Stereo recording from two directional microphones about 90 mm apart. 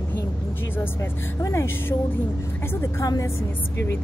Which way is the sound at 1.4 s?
30° left (ahead or behind).